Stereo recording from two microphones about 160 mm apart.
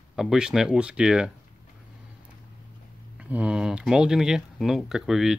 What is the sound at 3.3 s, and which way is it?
Speech, 5° right (ahead or behind).